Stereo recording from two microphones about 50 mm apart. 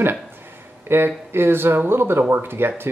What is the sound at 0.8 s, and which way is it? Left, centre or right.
A man's voice, right.